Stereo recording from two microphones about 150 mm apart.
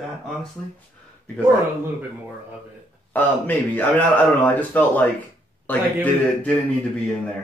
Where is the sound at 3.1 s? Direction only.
10° left (ahead or behind).